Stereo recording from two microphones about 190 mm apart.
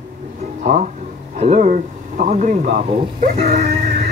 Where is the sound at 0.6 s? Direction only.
40° right (ahead or behind).